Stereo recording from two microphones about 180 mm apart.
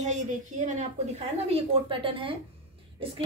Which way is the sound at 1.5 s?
30° right (ahead or behind).